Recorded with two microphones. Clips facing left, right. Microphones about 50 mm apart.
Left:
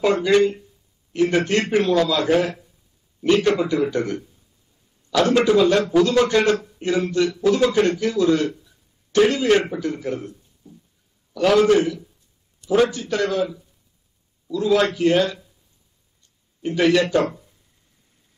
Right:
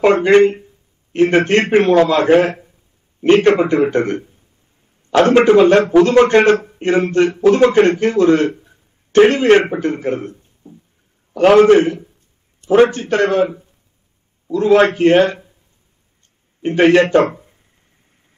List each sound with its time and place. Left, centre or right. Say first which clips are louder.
0.0 s a man's voice: right 7 dB; right
16.6 s a man's voice: right 7 dB; right